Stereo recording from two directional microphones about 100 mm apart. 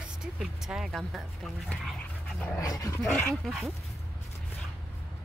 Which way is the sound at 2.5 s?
35° left (ahead or behind).